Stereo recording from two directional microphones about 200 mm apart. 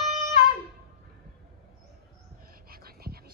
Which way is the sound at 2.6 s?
50° right (ahead or behind).